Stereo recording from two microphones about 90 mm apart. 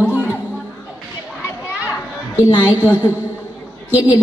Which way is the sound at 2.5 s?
50° left (ahead or behind).